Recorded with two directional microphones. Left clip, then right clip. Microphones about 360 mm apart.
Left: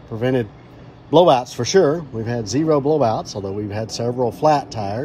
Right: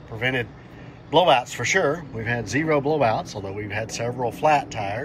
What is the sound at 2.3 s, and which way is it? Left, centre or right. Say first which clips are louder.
Speech: left 3 dB; centre.